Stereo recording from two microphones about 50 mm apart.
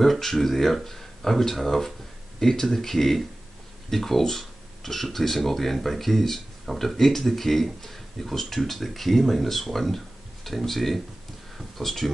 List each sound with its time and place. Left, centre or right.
0.0 s speech: centre